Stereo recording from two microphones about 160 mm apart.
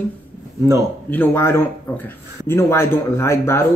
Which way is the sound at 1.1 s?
15° left (ahead or behind).